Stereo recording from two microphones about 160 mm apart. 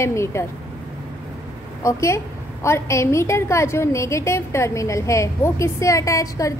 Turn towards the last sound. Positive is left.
turn(degrees=20)  # may be behind; listen again after turning